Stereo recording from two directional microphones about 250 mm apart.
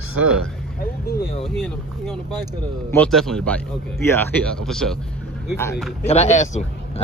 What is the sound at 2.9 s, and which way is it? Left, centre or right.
Speech, centre.